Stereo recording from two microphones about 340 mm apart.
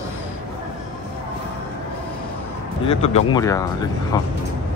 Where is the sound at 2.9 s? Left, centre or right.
Centre.